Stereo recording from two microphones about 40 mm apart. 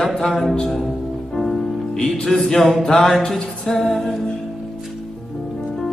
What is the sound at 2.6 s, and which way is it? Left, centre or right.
Mantra, centre.